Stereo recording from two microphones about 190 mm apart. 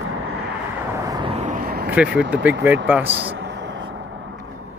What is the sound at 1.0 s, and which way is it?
Vehicle, 20° right (ahead or behind).